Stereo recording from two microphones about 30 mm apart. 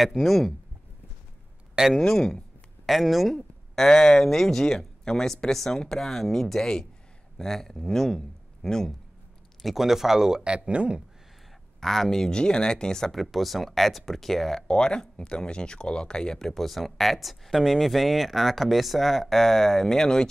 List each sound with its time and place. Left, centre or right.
0.0 s speech: centre
2.0 s speech: centre
2.9 s speech: centre
3.3 s speech: centre
9.8 s speech: centre
10.4 s speech: right
11.8 s speech: centre
12.3 s speech: left
13.0 s speech: centre
14.7 s speech: left
16.3 s speech: centre